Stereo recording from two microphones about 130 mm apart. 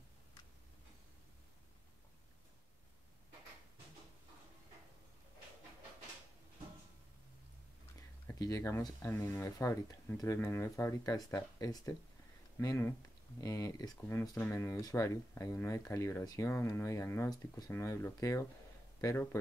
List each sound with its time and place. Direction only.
8.4 s speech: 25° left (ahead or behind)